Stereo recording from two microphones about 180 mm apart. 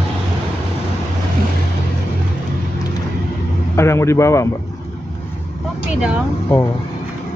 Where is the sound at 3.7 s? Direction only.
15° left (ahead or behind).